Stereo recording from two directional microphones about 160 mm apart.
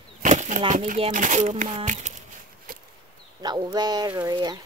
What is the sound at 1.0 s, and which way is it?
Speech, 50° right (ahead or behind).